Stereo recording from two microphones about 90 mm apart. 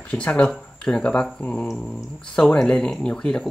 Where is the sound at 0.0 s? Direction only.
10° left (ahead or behind).